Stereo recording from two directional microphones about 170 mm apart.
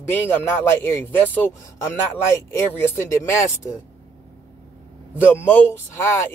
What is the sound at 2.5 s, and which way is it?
Speech, 15° left (ahead or behind).